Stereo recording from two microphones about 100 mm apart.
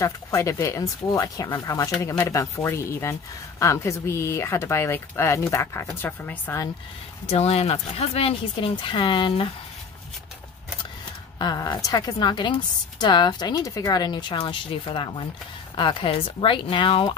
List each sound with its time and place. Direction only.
0.0 s speech: 30° left (ahead or behind)
7.2 s speech: 90° left; by 9.5 s 55° left (ahead or behind)
11.3 s a woman's voice: 40° left (ahead or behind); by 17.1 s 60° left (ahead or behind)